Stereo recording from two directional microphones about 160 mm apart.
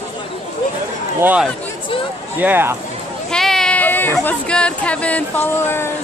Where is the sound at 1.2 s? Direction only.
10° right (ahead or behind).